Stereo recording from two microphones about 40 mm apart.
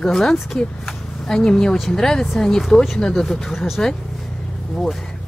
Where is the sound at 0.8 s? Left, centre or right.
Centre.